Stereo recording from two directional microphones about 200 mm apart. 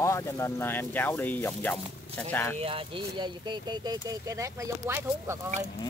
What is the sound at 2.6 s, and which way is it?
Speech, 25° right (ahead or behind).